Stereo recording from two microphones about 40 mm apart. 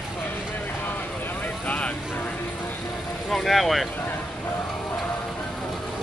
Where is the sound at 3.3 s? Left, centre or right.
Centre.